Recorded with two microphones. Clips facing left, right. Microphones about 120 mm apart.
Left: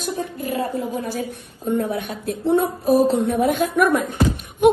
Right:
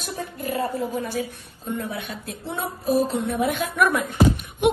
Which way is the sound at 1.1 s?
50° left (ahead or behind).